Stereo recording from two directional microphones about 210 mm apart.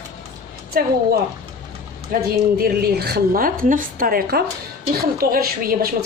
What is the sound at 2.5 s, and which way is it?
A woman's voice, 50° right (ahead or behind).